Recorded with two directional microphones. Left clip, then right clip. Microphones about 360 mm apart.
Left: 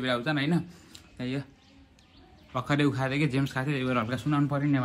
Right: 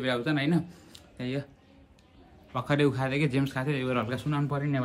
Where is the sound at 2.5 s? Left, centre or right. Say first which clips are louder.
Right 1 dB; centre.